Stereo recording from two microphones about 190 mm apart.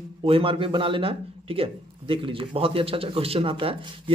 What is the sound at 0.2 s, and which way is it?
Speech, 30° right (ahead or behind).